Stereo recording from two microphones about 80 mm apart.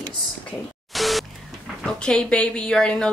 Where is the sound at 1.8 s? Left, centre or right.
Centre.